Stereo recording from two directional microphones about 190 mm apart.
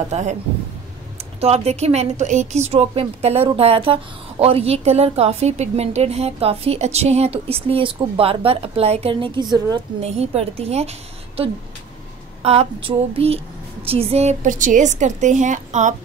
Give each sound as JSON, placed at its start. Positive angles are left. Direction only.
{"t": 0.1, "sound": "a woman's voice", "side_deg": -40}
{"t": 1.4, "sound": "a woman's voice", "side_deg": -35}
{"t": 10.0, "sound": "a woman's voice", "side_deg": -35}
{"t": 12.4, "sound": "a woman's voice", "side_deg": -30}